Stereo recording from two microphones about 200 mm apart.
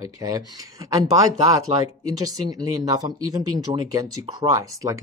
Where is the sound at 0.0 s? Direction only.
20° right (ahead or behind).